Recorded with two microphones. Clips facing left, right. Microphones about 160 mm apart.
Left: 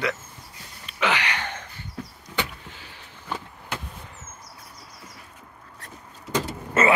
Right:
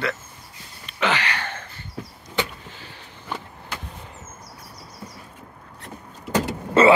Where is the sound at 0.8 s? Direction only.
10° left (ahead or behind).